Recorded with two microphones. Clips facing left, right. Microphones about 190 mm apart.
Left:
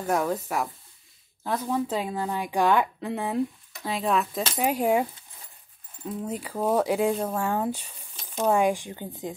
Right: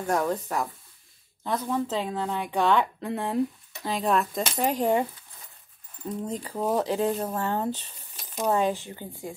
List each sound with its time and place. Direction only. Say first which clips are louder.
0.0 s speech: even; 5° left (ahead or behind)
6.0 s speech: even; 10° left (ahead or behind)